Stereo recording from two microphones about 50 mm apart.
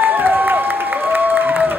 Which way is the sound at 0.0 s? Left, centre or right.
Right.